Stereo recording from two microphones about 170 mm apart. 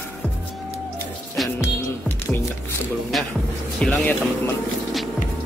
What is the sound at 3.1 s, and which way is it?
Speech, centre (ahead or behind).